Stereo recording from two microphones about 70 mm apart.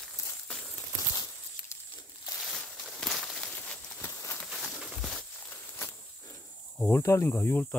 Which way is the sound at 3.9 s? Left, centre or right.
Left.